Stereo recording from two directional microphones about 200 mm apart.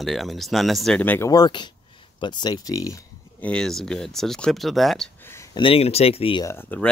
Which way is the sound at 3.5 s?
Centre (ahead or behind).